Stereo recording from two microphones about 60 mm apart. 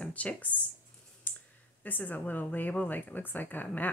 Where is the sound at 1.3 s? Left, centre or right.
Left.